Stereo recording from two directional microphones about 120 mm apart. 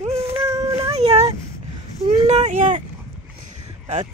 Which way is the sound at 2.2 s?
75° right (ahead or behind).